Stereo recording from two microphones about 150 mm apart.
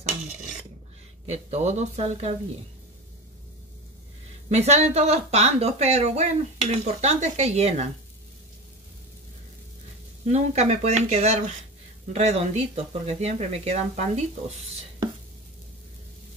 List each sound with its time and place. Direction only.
1.3 s a woman's voice: 45° right (ahead or behind)
4.5 s a woman's voice: 45° right (ahead or behind)
10.2 s a woman's voice: 45° right (ahead or behind)